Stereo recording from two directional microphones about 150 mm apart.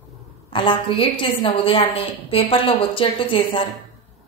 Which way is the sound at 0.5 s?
35° left (ahead or behind).